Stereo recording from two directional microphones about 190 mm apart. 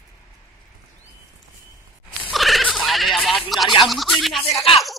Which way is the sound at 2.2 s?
Centre (ahead or behind).